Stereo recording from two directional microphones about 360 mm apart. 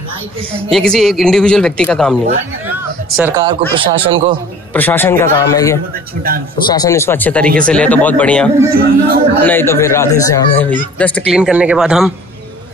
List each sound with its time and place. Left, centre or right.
0.6 s speech: centre
3.2 s speech: centre
4.7 s speech: centre
8.7 s speech: right
9.4 s speech: centre